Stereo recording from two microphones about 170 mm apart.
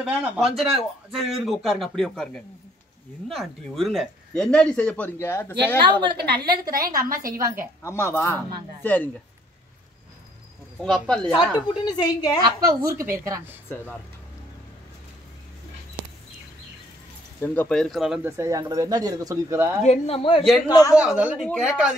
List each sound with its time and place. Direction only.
0.0 s speech: centre (ahead or behind); by 5.8 s 15° left (ahead or behind)
6.1 s a woman's voice: 65° right (ahead or behind)
7.8 s speech: 15° left (ahead or behind)
10.8 s speech: 5° left (ahead or behind)
11.3 s a woman's voice: 25° left (ahead or behind)
12.4 s a woman's voice: 25° right (ahead or behind)
17.4 s speech: 10° left (ahead or behind)
18.2 s speech: 15° right (ahead or behind)
19.8 s speech: 40° left (ahead or behind)
20.6 s a woman's voice: 25° left (ahead or behind)
20.9 s speech: 5° right (ahead or behind)